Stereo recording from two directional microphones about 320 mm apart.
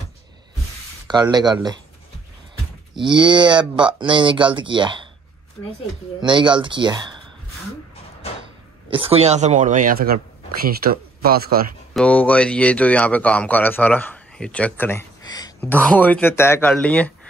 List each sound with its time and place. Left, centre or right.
1.0 s speech: centre
3.0 s speech: centre
6.2 s speech: centre
8.9 s speech: centre
11.9 s a man's voice: centre